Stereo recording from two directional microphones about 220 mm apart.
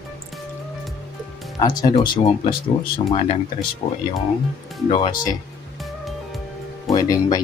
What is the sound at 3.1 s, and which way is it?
Speech, 30° left (ahead or behind).